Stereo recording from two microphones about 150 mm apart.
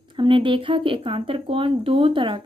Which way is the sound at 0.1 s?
35° right (ahead or behind).